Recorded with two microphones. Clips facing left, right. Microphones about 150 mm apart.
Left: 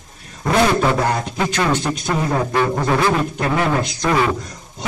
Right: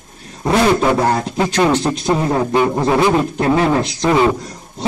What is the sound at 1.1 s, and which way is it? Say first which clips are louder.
Speech: right 4 dB; 30° right (ahead or behind).